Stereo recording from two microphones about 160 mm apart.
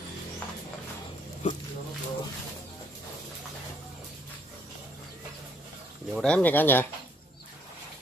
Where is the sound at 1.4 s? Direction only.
45° left (ahead or behind).